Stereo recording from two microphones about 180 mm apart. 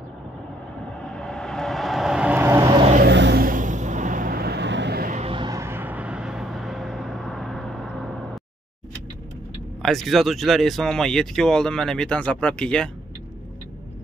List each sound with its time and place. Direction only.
1.0 s vehicle: 5° left (ahead or behind); by 2.7 s 15° right (ahead or behind)
3.1 s a sound: 70° right (ahead or behind)
3.4 s vehicle: 45° right (ahead or behind); by 5.1 s 65° right (ahead or behind)
5.1 s vehicle: 30° right (ahead or behind); by 8.2 s centre (ahead or behind)
9.8 s speech: centre (ahead or behind)